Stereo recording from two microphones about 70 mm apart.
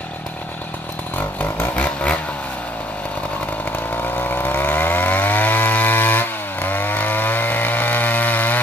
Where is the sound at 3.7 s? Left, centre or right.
Left.